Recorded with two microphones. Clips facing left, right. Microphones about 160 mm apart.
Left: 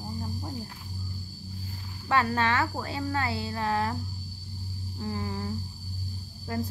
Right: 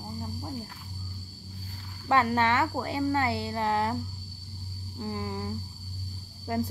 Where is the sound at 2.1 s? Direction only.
20° right (ahead or behind).